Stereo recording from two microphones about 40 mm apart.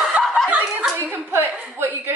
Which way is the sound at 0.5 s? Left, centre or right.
Right.